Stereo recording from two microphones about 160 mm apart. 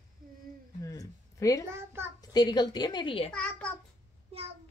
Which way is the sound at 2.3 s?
25° left (ahead or behind).